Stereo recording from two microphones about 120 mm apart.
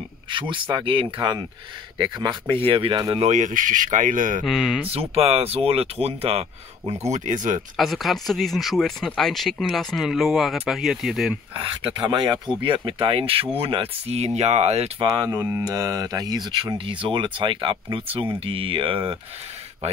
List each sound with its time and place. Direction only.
0.3 s speech: 40° right (ahead or behind)
3.3 s speech: 90° right
4.5 s speech: 5° right (ahead or behind)
4.8 s speech: 55° right (ahead or behind)
6.9 s speech: 70° right (ahead or behind); by 7.6 s 90° right
7.7 s speech: centre (ahead or behind)
11.5 s speech: 50° right (ahead or behind)
15.0 s speech: 35° right (ahead or behind)